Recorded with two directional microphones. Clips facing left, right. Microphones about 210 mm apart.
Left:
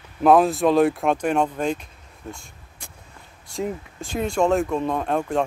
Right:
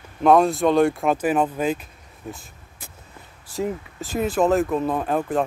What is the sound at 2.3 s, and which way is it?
Vehicle, 5° right (ahead or behind).